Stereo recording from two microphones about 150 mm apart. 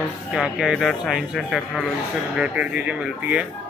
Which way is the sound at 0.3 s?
5° right (ahead or behind).